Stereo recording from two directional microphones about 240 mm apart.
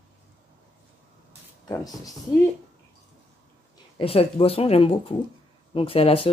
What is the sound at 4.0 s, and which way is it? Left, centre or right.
Speech, left.